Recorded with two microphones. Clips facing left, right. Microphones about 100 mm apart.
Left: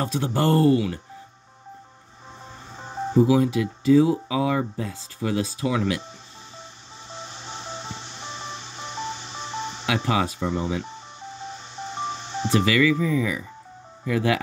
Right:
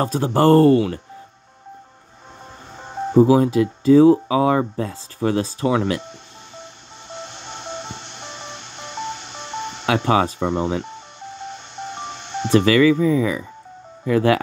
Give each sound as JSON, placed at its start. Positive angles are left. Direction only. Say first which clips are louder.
{"t": 0.0, "sound": "speech", "louder": "right 6 dB", "side_deg": -45}
{"t": 2.8, "sound": "music", "louder": "right 3 dB", "side_deg": 0}
{"t": 3.2, "sound": "speech", "louder": "right 5 dB", "side_deg": -40}
{"t": 7.1, "sound": "music", "louder": "right 3 dB", "side_deg": 0}
{"t": 10.4, "sound": "speech", "louder": "right 5 dB", "side_deg": -70}
{"t": 10.9, "sound": "music", "louder": "right 3 dB", "side_deg": 0}
{"t": 12.5, "sound": "speech", "louder": "right 6 dB", "side_deg": -40}